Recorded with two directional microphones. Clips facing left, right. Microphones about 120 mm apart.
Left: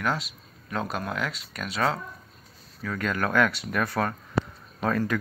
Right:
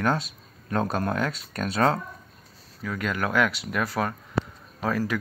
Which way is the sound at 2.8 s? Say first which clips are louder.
Even; 15° right (ahead or behind).